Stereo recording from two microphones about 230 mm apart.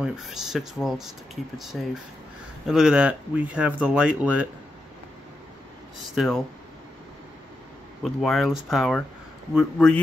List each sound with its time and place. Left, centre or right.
0.0 s speech: centre
6.1 s speech: centre
8.0 s speech: centre